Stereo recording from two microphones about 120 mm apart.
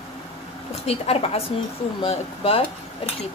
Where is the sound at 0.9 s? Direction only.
60° left (ahead or behind).